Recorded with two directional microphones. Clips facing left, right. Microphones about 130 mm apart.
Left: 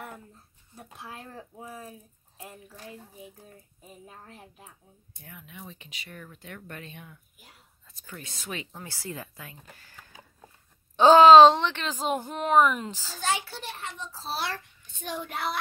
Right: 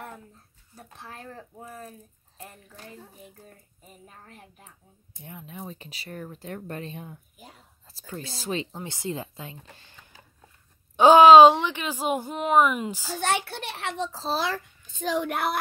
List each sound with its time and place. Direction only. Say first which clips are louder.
0.7 s speech: left 1 dB; 10° left (ahead or behind)
3.8 s speech: left 2 dB; 5° left (ahead or behind)
5.2 s a woman's voice: right 6 dB; 30° right (ahead or behind); by 13.1 s 10° right (ahead or behind)
13.2 s a child's voice: right 3 dB; 60° right (ahead or behind); by 15.3 s 90° right
15.3 s speech: right 4 dB; 55° right (ahead or behind)